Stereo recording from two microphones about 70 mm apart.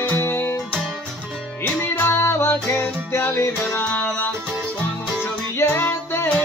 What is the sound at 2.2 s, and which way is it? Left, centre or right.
Music, left.